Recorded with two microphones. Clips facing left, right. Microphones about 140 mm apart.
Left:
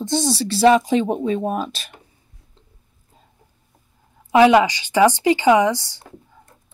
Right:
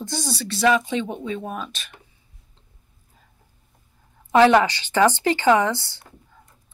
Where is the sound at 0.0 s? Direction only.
25° left (ahead or behind).